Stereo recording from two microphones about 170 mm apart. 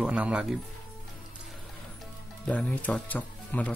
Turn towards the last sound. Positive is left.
turn(degrees=10)  # may be behind; listen again after turning